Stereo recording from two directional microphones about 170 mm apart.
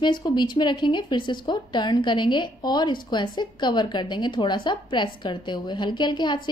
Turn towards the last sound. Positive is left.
turn(degrees=25)  # may be behind; listen again after turning